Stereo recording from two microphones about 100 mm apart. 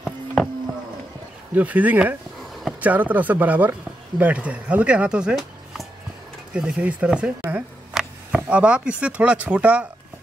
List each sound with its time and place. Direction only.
0.0 s insect: 5° left (ahead or behind)
1.5 s speech: 15° right (ahead or behind)